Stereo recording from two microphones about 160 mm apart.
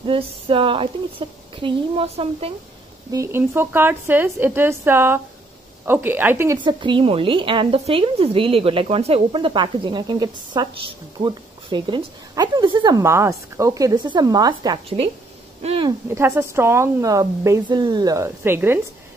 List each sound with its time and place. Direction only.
0.0 s a woman's voice: 35° right (ahead or behind)
3.1 s speech: 15° right (ahead or behind)
6.6 s speech: 30° right (ahead or behind)
16.1 s speech: 15° right (ahead or behind)